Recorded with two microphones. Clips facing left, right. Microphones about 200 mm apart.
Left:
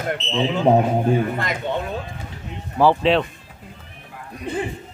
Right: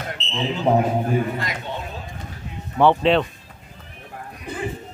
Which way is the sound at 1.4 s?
55° left (ahead or behind).